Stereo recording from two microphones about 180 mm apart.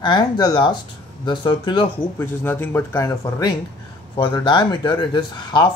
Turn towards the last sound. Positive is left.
turn(degrees=25)  # may be behind; listen again after turning